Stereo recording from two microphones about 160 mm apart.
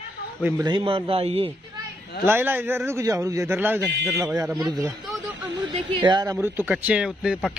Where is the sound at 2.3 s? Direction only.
15° right (ahead or behind).